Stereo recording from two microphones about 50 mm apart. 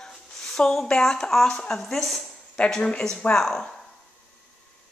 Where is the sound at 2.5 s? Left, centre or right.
Centre.